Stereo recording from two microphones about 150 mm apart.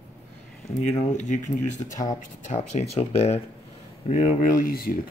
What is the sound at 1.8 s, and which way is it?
Speech, 40° left (ahead or behind).